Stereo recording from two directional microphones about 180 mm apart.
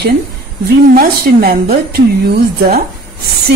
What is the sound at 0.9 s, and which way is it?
Speech, 55° right (ahead or behind).